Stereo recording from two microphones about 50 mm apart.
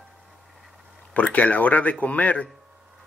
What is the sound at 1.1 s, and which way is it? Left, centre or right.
Speech, left.